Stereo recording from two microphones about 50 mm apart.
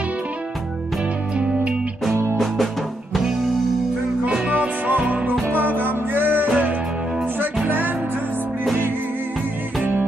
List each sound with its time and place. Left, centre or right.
2.3 s music: centre
4.5 s music: right
5.5 s music: right